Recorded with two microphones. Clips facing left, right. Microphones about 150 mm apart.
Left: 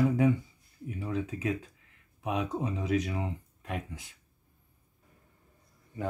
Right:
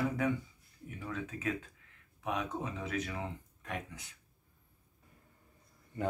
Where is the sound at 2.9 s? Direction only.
15° left (ahead or behind).